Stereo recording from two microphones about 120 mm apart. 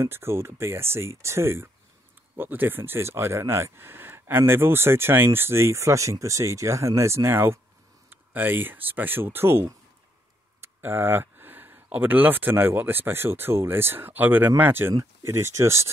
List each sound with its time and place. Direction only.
0.0 s speech: 20° right (ahead or behind)